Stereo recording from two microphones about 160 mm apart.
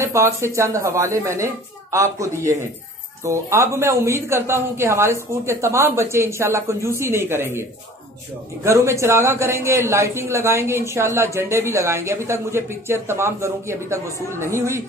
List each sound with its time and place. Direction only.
0.0 s speech: 15° right (ahead or behind)
8.6 s speech: 15° right (ahead or behind)